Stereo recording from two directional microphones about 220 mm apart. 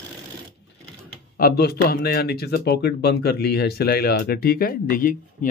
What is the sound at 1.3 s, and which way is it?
Speech, 45° left (ahead or behind).